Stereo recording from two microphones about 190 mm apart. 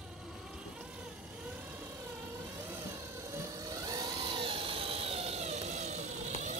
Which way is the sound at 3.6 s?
20° right (ahead or behind).